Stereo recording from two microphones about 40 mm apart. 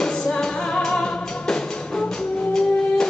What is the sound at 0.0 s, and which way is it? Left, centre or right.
Music, centre.